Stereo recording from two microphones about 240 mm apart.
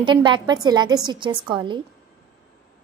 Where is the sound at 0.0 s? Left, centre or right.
Centre.